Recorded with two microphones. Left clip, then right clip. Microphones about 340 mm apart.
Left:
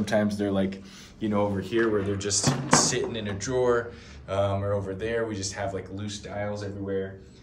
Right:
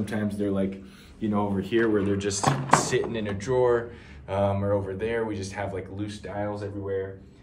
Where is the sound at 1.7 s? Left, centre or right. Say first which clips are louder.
Right 3 dB; right.